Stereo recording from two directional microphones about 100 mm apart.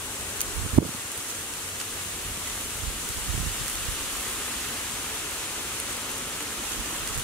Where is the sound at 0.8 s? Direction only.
90° right.